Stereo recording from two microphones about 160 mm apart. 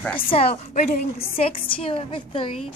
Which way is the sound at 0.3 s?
40° left (ahead or behind).